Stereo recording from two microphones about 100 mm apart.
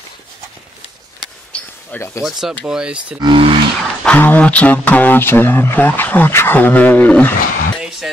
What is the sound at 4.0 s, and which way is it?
Speech, 15° left (ahead or behind).